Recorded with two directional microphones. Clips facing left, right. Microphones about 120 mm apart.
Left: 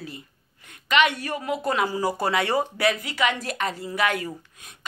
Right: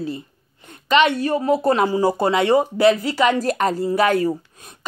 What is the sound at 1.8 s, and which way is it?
Speech, 25° right (ahead or behind).